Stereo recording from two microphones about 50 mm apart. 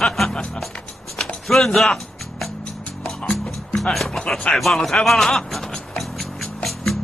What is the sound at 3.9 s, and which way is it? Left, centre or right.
Speech, centre.